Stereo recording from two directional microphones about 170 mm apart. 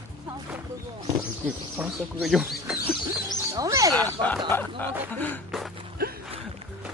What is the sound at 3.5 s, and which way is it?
Speech, 20° right (ahead or behind).